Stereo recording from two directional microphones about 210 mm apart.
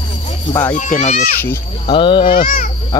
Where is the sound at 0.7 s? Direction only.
35° left (ahead or behind).